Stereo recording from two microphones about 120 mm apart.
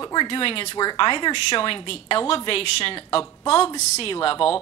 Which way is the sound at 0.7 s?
40° left (ahead or behind).